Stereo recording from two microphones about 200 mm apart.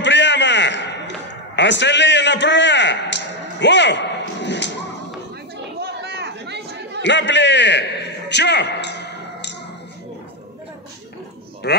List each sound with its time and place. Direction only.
0.0 s a sound: 65° left (ahead or behind)
5.8 s chatter: 55° right (ahead or behind)
7.0 s a man's voice: 65° left (ahead or behind)
8.3 s music: 60° left (ahead or behind)
11.6 s speech: 55° left (ahead or behind)